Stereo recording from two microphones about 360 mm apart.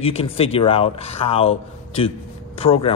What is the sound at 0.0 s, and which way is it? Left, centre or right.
Speech, centre.